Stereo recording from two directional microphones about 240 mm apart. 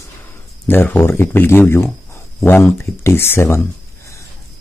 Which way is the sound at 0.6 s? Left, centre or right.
Centre.